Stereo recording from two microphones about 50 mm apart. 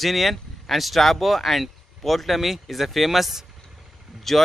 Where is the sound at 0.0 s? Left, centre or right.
Centre.